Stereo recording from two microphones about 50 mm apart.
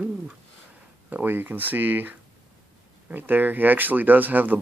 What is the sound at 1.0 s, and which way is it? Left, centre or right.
Speech, right.